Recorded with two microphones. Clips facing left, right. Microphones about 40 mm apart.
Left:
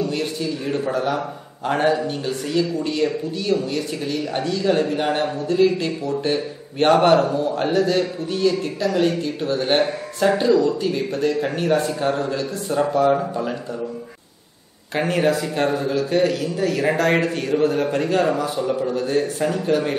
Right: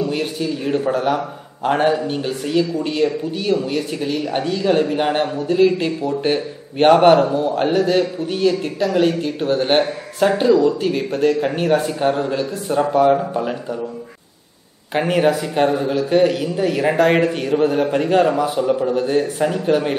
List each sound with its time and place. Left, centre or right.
0.0 s a man's voice: right
15.0 s a man's voice: centre